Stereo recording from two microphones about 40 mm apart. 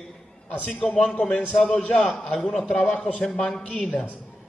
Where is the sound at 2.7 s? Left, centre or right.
Left.